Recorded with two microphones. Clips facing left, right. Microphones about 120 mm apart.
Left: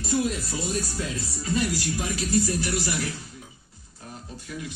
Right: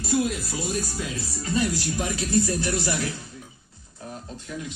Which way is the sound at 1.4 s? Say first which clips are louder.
Right 1 dB; 30° right (ahead or behind).